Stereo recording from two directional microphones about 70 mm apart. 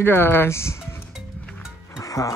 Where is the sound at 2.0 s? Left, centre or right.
Left.